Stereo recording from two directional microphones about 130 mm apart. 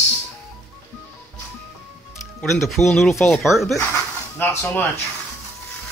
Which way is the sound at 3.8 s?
15° left (ahead or behind).